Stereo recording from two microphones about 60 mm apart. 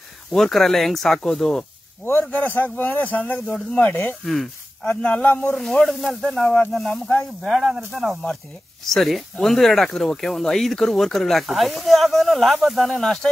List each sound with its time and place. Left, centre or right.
0.3 s speech: centre
2.3 s speech: left
3.9 s speech: left
4.2 s speech: centre
4.8 s speech: left
5.6 s speech: centre